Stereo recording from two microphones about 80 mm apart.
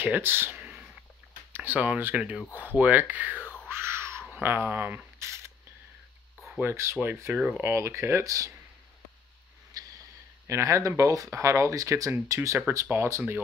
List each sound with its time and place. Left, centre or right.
0.0 s speech: right
0.6 s a sound: centre
1.5 s speech: right
3.6 s a sound: right
4.4 s speech: right
5.2 s camera: right
6.6 s speech: right
7.3 s speech: centre
7.7 s speech: right
9.8 s a sound: right
10.4 s speech: right
12.8 s speech: right